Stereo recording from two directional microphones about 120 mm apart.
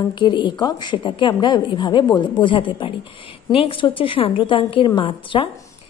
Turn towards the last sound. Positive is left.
turn(degrees=45)  # may be behind; listen again after turning